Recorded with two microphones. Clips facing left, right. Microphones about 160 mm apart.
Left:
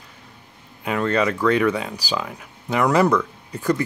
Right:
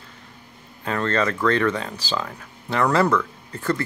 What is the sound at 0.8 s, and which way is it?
Speech, 10° left (ahead or behind).